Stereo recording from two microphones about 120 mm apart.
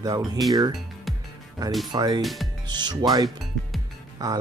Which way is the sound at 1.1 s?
Centre (ahead or behind).